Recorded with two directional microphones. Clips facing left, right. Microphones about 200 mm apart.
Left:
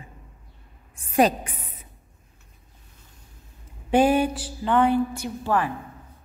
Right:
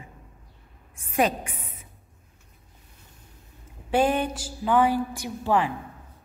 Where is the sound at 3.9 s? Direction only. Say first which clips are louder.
Left 4 dB; 10° left (ahead or behind).